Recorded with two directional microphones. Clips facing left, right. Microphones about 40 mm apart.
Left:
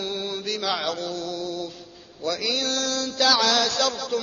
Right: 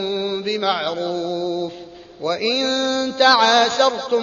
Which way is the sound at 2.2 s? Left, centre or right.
Right.